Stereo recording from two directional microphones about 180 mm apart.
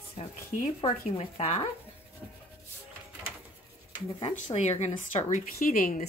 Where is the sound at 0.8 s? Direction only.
35° left (ahead or behind).